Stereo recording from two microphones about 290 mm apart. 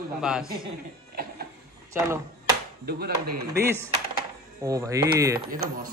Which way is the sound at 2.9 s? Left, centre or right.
Right.